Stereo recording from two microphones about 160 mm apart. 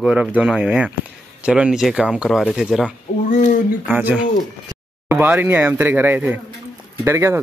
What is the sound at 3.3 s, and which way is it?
Speech, 55° left (ahead or behind).